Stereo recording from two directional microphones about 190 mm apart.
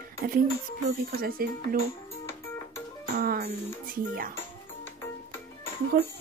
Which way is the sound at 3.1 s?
50° right (ahead or behind).